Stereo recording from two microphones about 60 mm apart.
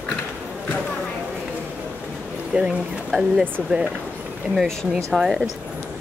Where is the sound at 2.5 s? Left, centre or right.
Centre.